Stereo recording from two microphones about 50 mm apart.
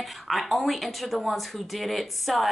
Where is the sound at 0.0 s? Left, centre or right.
Centre.